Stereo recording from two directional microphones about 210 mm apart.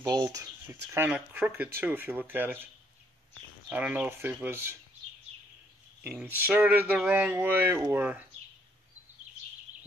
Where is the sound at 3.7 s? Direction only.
10° right (ahead or behind).